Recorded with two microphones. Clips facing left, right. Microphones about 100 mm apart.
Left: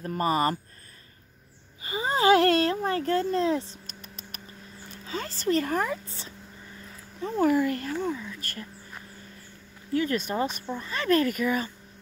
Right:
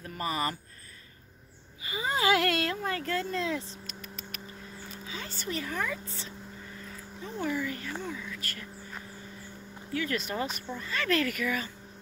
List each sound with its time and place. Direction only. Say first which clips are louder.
0.0 s speech: left 7 dB; 40° left (ahead or behind)
1.8 s speech: left 4 dB; 35° left (ahead or behind)
5.0 s speech: left 10 dB; 45° left (ahead or behind)
7.2 s speech: left 9 dB; 45° left (ahead or behind)
8.0 s speech: left 7 dB; 30° left (ahead or behind)
9.9 s speech: left 5 dB; 30° left (ahead or behind)